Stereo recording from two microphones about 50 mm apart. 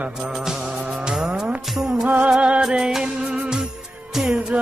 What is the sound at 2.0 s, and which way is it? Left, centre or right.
Music, right.